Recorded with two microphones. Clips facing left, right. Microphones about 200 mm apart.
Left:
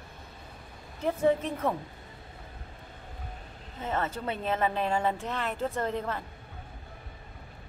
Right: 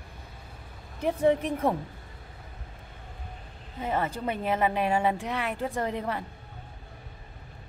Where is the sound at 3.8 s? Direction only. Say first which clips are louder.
Right 2 dB; 10° right (ahead or behind).